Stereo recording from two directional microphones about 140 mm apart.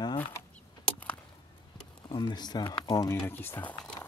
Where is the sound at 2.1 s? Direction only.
35° left (ahead or behind).